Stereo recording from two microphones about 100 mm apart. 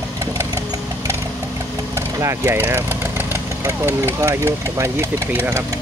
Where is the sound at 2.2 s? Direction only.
25° right (ahead or behind).